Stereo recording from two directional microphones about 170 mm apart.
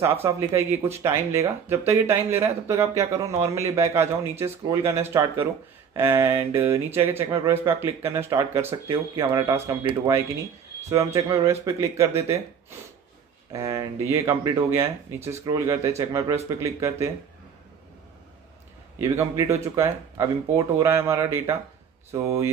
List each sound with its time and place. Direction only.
0.5 s speech: 15° right (ahead or behind)
13.5 s speech: 20° right (ahead or behind)
18.9 s speech: 15° right (ahead or behind)